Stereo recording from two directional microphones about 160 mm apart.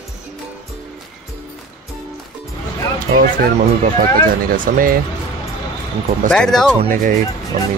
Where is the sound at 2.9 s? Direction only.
60° right (ahead or behind).